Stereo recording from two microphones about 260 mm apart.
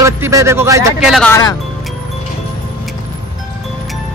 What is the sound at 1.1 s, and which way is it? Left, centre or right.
Speech, centre.